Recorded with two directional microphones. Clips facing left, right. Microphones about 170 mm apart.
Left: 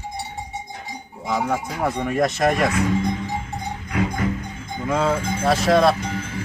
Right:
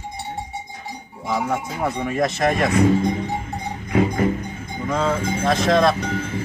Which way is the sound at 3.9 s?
25° right (ahead or behind).